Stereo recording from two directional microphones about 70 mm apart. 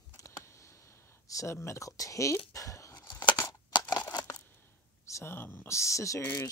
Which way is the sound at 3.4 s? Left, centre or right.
Left.